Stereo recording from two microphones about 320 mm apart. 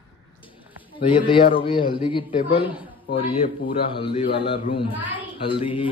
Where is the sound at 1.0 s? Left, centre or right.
Centre.